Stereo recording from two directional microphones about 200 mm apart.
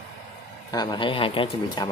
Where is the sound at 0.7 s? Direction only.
20° left (ahead or behind).